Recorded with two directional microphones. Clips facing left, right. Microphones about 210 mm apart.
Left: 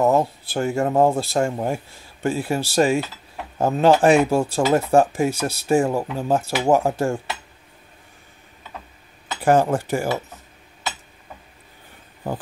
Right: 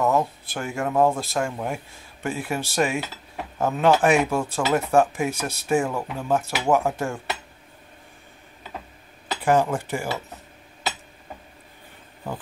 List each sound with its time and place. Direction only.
0.0 s speech: 30° left (ahead or behind)
9.4 s speech: 40° left (ahead or behind)